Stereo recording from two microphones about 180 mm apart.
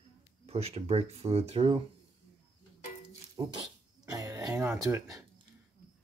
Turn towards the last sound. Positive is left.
turn(degrees=-15)  # may be behind; listen again after turning